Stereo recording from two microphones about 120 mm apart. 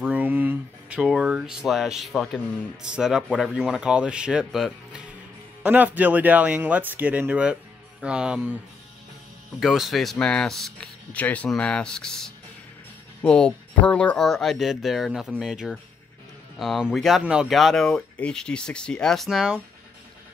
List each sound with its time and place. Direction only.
0.0 s speech: 15° right (ahead or behind)
5.6 s speech: 15° right (ahead or behind)
9.6 s speech: centre (ahead or behind)